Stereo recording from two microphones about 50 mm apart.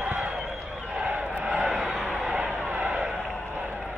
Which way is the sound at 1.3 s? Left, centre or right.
Right.